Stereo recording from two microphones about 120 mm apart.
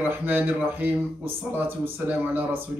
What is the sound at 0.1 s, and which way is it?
Speech, 15° right (ahead or behind).